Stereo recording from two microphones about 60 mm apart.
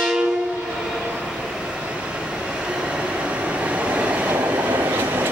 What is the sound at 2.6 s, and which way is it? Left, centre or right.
Train, centre.